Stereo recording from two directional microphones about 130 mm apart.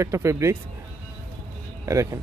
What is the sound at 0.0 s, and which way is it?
Speech, 20° right (ahead or behind).